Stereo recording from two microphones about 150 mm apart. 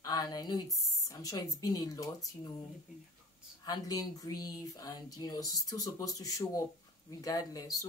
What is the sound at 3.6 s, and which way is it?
Speech, 25° left (ahead or behind).